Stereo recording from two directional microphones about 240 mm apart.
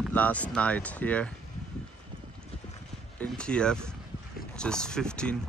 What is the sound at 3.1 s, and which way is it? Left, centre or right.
Speech, centre.